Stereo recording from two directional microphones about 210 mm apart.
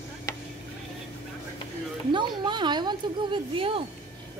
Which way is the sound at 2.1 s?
20° right (ahead or behind).